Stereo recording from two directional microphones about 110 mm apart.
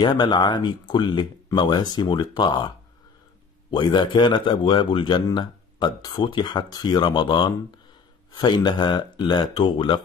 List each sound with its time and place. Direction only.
0.0 s speech: 40° left (ahead or behind)
3.7 s speech: 45° left (ahead or behind)